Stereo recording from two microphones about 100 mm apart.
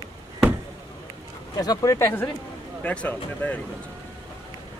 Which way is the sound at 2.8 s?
15° left (ahead or behind).